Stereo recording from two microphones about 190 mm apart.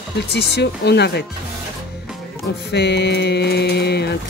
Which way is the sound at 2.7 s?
60° left (ahead or behind).